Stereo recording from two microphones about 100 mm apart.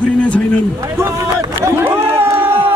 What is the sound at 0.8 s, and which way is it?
Speech, 30° right (ahead or behind).